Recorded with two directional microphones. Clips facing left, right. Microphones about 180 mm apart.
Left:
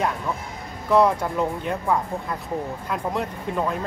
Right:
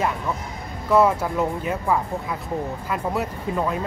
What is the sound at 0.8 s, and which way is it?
Speech, centre (ahead or behind).